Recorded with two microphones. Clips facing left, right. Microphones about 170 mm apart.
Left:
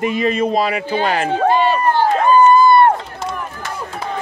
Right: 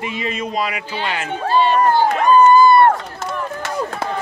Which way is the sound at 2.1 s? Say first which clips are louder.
Left 1 dB; 30° left (ahead or behind).